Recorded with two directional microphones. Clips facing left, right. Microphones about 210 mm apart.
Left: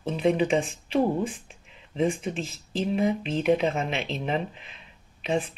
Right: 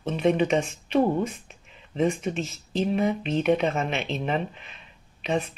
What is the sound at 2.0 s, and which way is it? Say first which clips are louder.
Speech: right 1 dB; 30° left (ahead or behind).